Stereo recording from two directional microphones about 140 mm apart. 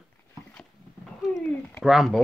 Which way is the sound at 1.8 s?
Centre (ahead or behind).